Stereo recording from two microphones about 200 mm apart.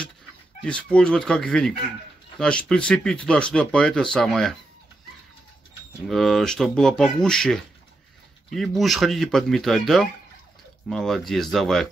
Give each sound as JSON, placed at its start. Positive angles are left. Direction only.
{"t": 0.7, "sound": "speech", "side_deg": 5}
{"t": 6.0, "sound": "speech", "side_deg": 0}